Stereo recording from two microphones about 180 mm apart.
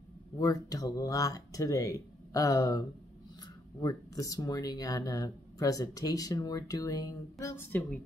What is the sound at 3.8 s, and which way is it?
Speech, 20° left (ahead or behind).